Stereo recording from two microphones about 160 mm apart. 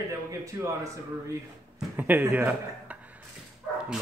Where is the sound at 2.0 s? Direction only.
10° right (ahead or behind).